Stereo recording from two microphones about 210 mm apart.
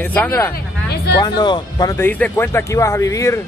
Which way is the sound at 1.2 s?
20° left (ahead or behind).